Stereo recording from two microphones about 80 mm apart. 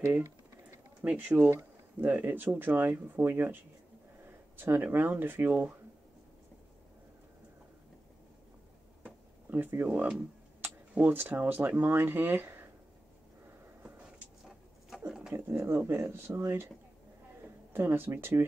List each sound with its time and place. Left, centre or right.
1.0 s speech: centre
1.5 s a sound: right
2.0 s speech: right
4.6 s speech: right
9.0 s a sound: right
10.6 s speech: right
14.4 s a sound: centre
15.3 s speech: right
17.7 s speech: right